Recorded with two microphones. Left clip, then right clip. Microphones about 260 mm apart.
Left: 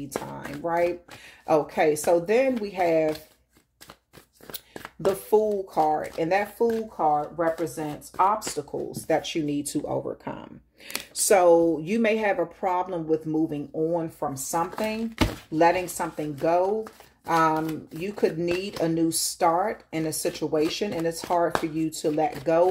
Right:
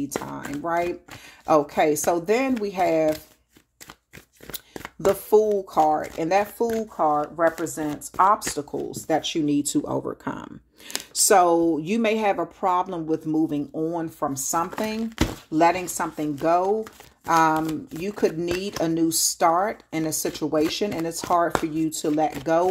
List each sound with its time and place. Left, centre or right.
0.1 s speech: right
4.5 s speech: right